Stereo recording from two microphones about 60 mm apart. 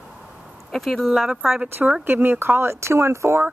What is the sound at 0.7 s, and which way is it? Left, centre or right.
Speech, centre.